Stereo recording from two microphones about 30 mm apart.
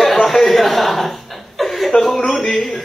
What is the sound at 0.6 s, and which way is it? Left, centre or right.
Chuckle, centre.